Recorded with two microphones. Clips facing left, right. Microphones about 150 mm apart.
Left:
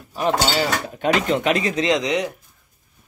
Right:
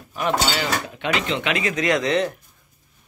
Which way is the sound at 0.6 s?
40° left (ahead or behind).